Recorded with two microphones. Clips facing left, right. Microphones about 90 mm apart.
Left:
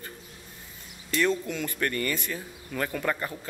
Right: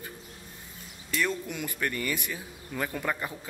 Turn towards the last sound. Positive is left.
turn(degrees=-10)  # may be behind; listen again after turning